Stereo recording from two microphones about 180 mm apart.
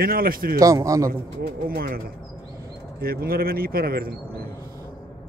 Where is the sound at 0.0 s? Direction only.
55° right (ahead or behind).